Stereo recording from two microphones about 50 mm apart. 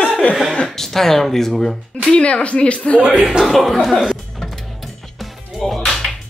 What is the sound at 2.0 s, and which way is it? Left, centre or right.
Speech, left.